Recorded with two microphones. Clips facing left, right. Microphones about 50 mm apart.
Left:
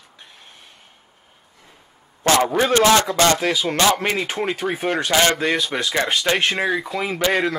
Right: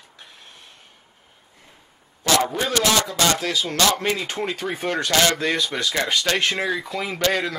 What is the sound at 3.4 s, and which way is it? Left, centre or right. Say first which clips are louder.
Speech: left 3 dB; centre.